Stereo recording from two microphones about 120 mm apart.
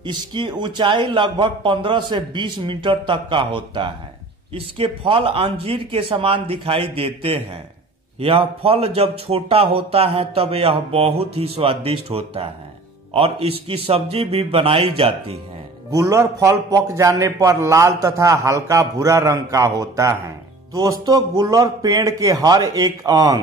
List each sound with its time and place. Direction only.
0.0 s a man's voice: 40° right (ahead or behind)
15.9 s a man's voice: 30° right (ahead or behind)